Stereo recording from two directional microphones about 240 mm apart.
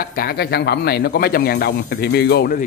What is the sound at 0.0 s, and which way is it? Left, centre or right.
Speech, left.